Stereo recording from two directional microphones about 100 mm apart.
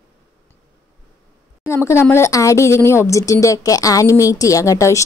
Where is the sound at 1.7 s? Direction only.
25° left (ahead or behind).